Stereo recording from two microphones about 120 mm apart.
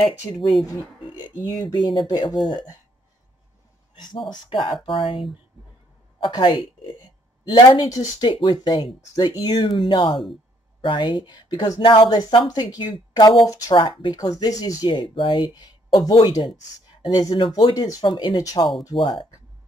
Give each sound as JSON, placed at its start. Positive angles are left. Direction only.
{"t": 0.3, "sound": "speech", "side_deg": 35}
{"t": 3.9, "sound": "speech", "side_deg": 35}
{"t": 6.3, "sound": "speech", "side_deg": 40}
{"t": 14.4, "sound": "speech", "side_deg": 30}
{"t": 18.0, "sound": "speech", "side_deg": 40}